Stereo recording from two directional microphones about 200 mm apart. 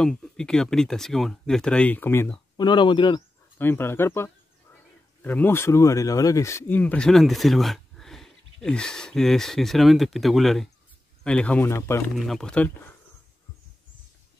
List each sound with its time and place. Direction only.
0.0 s speech: 5° left (ahead or behind)
2.5 s speech: 20° left (ahead or behind)
3.5 s speech: 10° left (ahead or behind)
12.2 s speech: centre (ahead or behind)